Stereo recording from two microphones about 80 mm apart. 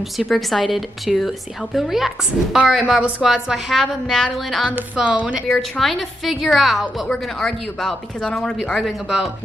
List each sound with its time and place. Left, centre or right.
0.3 s a woman's voice: centre
4.6 s speech: centre
5.5 s a woman's voice: centre